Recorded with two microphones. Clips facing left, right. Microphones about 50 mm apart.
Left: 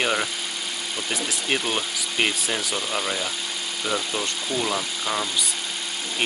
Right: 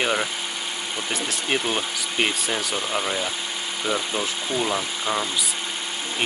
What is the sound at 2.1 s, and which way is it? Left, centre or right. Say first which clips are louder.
Speech: even; centre.